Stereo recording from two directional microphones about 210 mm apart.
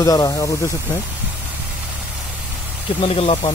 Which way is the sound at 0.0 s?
15° left (ahead or behind).